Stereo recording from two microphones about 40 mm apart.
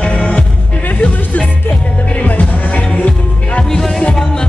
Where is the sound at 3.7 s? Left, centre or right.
Centre.